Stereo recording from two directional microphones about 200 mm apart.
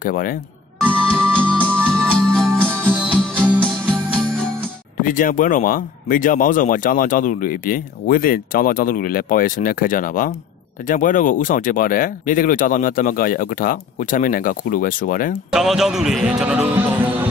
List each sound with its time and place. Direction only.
0.0 s speech: 45° left (ahead or behind)
0.8 s music: 5° left (ahead or behind)
5.0 s speech: 40° left (ahead or behind)
15.5 s a man's voice: centre (ahead or behind)